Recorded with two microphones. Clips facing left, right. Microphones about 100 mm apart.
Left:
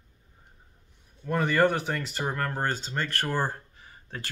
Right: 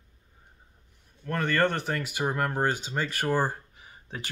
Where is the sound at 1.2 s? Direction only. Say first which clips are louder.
Left 2 dB; 10° left (ahead or behind).